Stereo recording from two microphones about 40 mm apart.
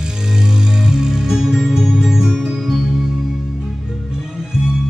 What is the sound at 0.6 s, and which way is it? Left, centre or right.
Music, centre.